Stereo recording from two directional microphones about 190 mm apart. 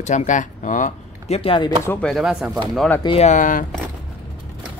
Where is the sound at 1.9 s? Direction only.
5° left (ahead or behind).